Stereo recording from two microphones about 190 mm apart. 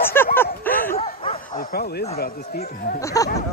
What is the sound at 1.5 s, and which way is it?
Bow-wow, 50° left (ahead or behind).